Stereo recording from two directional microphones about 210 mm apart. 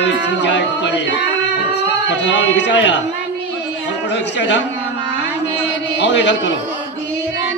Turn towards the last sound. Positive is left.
turn(degrees=55)  # may be behind; listen again after turning